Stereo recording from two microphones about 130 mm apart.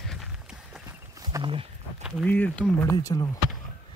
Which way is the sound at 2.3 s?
10° left (ahead or behind).